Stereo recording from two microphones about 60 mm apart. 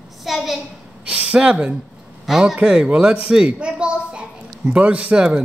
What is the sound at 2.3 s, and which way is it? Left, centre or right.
A man's voice, centre.